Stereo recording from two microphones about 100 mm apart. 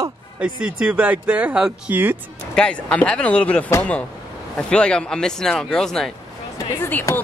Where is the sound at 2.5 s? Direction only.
10° left (ahead or behind).